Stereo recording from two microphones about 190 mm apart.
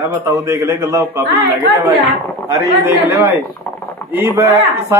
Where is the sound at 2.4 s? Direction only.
15° right (ahead or behind).